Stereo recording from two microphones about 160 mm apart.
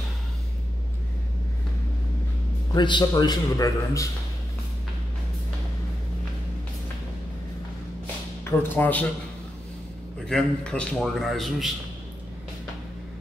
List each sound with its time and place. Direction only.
2.7 s a man's voice: 30° left (ahead or behind)
8.5 s speech: 10° left (ahead or behind)
10.2 s a man's voice: 5° left (ahead or behind)